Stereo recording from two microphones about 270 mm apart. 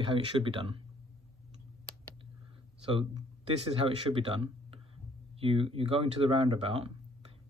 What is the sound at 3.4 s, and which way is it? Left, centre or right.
Speech, centre.